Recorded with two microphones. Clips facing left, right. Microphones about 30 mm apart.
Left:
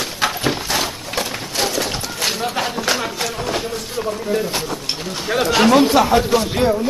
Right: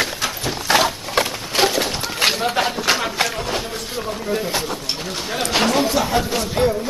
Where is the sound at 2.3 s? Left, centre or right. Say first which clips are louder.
Right 2 dB; centre.